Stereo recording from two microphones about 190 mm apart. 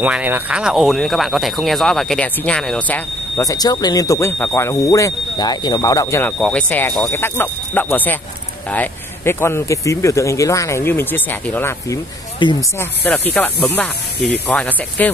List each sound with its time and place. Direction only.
0.0 s speech: 10° right (ahead or behind)
3.3 s speech: 20° left (ahead or behind)
12.4 s speech: 25° left (ahead or behind)
12.7 s speech: 10° left (ahead or behind)